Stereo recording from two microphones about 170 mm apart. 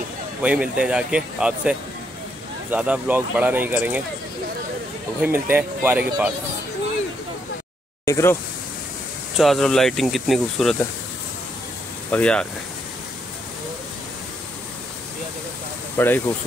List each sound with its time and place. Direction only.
0.4 s speech: 5° right (ahead or behind)
5.2 s speech: 10° right (ahead or behind)
8.0 s speech: 15° left (ahead or behind)
9.4 s speech: centre (ahead or behind)
12.1 s speech: 5° left (ahead or behind)
16.0 s speech: 10° left (ahead or behind)